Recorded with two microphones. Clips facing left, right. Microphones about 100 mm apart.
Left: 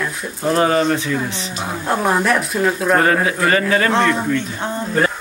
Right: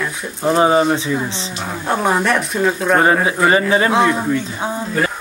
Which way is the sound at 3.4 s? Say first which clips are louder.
Right 3 dB; 20° right (ahead or behind).